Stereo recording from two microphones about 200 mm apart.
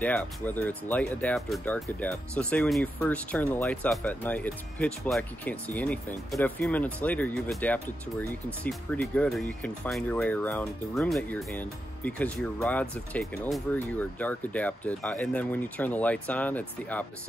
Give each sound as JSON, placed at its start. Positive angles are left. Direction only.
{"t": 0.0, "sound": "speech", "side_deg": 10}